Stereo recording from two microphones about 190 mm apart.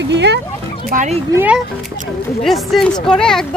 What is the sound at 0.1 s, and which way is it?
Speech, 65° right (ahead or behind).